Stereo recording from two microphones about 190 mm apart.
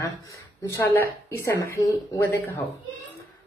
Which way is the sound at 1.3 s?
15° left (ahead or behind).